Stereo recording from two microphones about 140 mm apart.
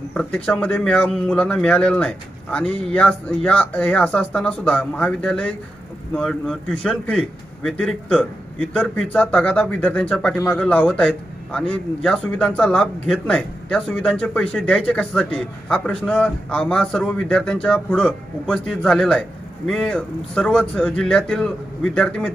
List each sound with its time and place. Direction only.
0.1 s a man's voice: 5° left (ahead or behind)